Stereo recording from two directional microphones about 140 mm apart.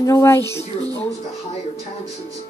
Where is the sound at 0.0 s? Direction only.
20° left (ahead or behind).